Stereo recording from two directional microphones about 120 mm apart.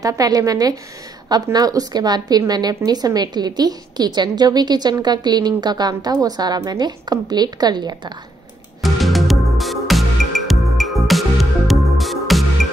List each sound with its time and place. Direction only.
0.0 s a woman's voice: 30° right (ahead or behind)
8.8 s music: centre (ahead or behind)